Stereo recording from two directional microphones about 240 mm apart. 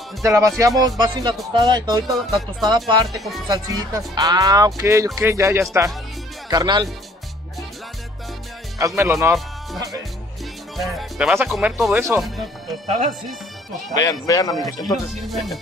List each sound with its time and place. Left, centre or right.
0.2 s speech: centre
3.1 s speech: centre
3.4 s speech: centre
8.7 s speech: centre
14.0 s speech: centre
14.8 s speech: centre